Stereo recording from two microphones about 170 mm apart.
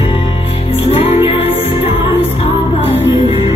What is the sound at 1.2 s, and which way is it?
Music, 35° left (ahead or behind).